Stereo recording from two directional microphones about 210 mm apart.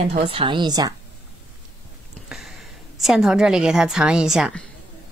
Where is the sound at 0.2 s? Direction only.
25° right (ahead or behind).